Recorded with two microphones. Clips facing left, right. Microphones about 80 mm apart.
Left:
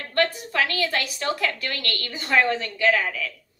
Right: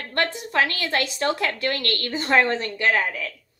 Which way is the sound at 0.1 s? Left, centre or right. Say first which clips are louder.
Left 1 dB; right.